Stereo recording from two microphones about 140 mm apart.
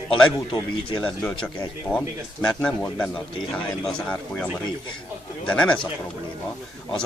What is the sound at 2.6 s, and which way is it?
Speech, 10° left (ahead or behind).